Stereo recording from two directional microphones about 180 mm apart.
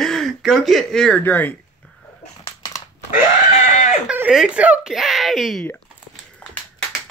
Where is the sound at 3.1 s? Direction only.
40° left (ahead or behind).